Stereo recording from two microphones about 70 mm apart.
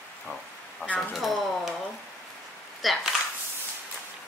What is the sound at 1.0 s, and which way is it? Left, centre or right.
Speech, centre.